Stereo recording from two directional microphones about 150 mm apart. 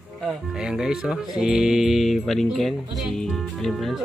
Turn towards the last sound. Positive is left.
turn(degrees=0)  # may be behind; listen again after turning